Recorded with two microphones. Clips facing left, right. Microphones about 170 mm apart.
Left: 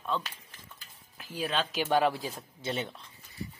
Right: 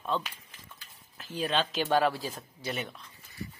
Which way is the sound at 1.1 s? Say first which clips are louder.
Right 2 dB; 10° left (ahead or behind).